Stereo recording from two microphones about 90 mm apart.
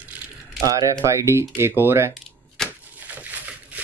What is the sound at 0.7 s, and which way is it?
Speech, 40° right (ahead or behind).